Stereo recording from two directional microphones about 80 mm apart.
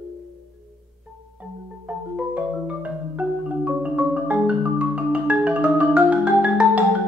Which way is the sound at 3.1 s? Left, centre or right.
Centre.